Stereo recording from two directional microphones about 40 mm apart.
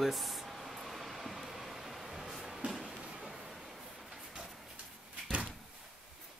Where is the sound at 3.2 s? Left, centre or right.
Centre.